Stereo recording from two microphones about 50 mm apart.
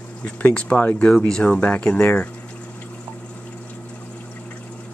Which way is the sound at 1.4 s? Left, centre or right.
Left.